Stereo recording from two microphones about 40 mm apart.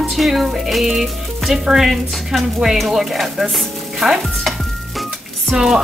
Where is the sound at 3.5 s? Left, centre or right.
Centre.